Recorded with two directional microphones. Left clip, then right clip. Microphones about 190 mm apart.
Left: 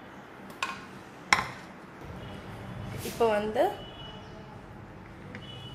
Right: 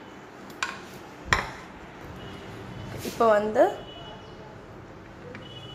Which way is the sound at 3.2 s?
20° right (ahead or behind).